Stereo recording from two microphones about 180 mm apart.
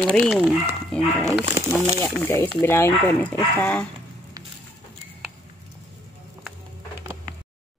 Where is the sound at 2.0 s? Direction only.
10° left (ahead or behind).